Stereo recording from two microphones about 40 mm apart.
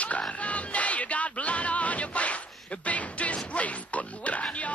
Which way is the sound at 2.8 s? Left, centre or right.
Left.